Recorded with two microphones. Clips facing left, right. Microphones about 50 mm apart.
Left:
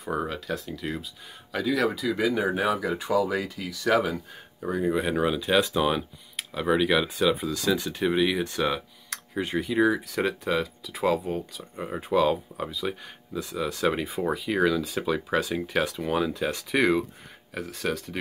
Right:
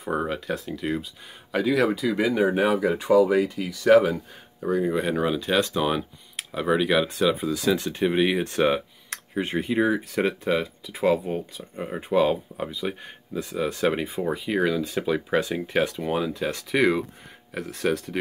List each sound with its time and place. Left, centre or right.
0.0 s speech: centre
4.6 s speech: centre
8.0 s speech: right
8.5 s a sound: right
9.4 s speech: right
10.1 s speech: centre
13.7 s speech: centre